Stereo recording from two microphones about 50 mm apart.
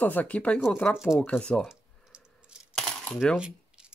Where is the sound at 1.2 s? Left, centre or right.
Left.